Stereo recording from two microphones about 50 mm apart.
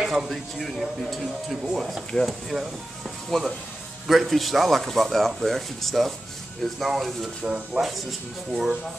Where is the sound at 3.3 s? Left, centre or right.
Centre.